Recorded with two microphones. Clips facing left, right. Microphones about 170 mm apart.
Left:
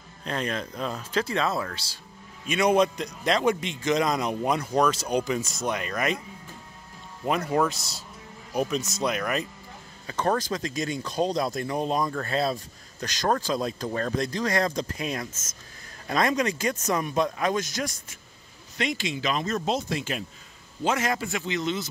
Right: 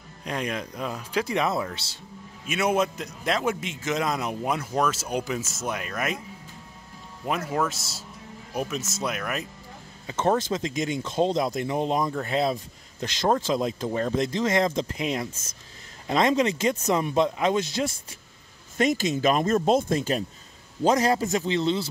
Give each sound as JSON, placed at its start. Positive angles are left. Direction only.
{"t": 0.2, "sound": "speech", "side_deg": -10}
{"t": 2.4, "sound": "a man's voice", "side_deg": -5}
{"t": 7.2, "sound": "a man's voice", "side_deg": 0}
{"t": 10.0, "sound": "speech", "side_deg": -20}
{"t": 18.8, "sound": "a man's voice", "side_deg": -45}